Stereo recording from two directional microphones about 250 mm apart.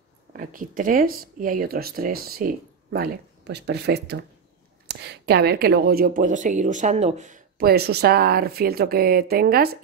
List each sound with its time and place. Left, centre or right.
0.3 s speech: right